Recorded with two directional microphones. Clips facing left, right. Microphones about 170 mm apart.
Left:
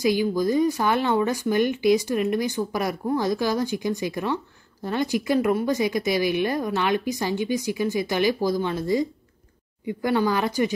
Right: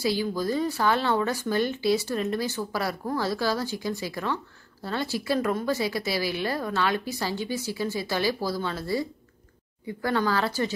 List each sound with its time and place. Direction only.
0.0 s speech: 15° left (ahead or behind)